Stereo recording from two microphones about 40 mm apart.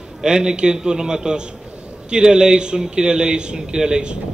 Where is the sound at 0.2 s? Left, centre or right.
Centre.